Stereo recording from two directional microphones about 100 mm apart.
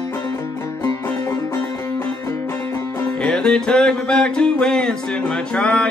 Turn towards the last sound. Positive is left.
turn(degrees=10)  # may be behind; listen again after turning